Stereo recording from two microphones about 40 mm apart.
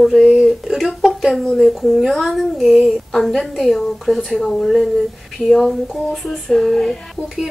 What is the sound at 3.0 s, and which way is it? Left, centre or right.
Speech, centre.